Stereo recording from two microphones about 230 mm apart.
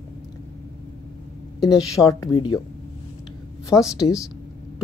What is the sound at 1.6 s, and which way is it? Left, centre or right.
Speech, centre.